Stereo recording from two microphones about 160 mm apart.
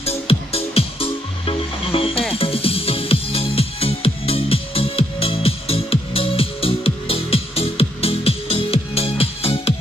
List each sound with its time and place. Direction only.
0.3 s music: 35° left (ahead or behind)